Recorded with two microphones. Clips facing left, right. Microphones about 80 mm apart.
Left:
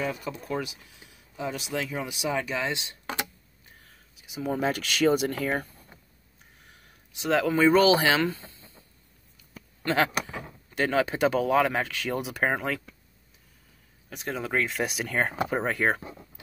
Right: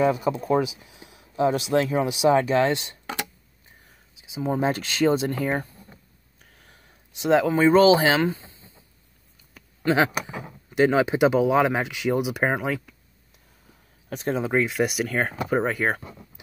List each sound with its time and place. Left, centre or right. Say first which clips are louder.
0.1 s speech: right 10 dB; right
2.7 s speech: right 7 dB; right
4.2 s speech: right 4 dB; right
6.7 s speech: right 1 dB; right
9.8 s speech: right 4 dB; centre
14.0 s speech: right 7 dB; right
14.3 s speech: right 5 dB; centre
14.7 s speech: right 6 dB; centre
16.0 s speech: even; centre